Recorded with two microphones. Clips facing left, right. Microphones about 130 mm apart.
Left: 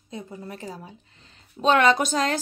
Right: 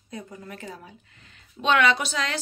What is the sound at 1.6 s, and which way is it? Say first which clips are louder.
Speech: left 3 dB; 40° left (ahead or behind).